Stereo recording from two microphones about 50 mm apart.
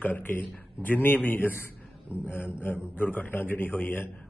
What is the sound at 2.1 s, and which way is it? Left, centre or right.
A man's voice, left.